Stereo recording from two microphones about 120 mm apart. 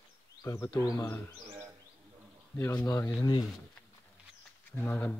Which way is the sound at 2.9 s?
30° left (ahead or behind).